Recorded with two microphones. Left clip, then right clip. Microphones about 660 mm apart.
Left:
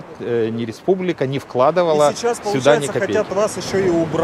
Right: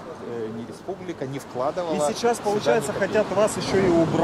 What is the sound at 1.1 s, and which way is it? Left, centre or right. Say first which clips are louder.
Speech: left 10 dB; left.